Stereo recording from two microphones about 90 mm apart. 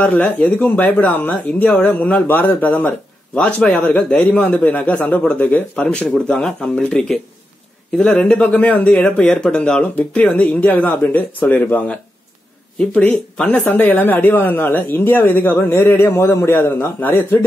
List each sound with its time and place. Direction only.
0.0 s speech: 15° left (ahead or behind)
13.7 s speech: 20° left (ahead or behind)